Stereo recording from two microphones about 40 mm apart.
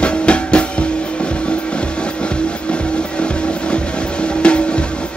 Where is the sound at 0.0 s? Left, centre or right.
Left.